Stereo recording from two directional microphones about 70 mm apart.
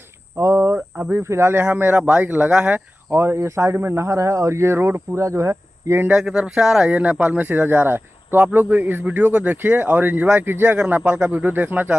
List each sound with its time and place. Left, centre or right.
0.4 s cricket: right
0.7 s a sound: centre
1.1 s speech: right
3.2 s speech: right
6.0 s speech: centre
6.9 s speech: right